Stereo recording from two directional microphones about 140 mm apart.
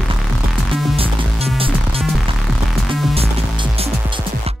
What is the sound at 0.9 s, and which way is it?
Music, 45° right (ahead or behind).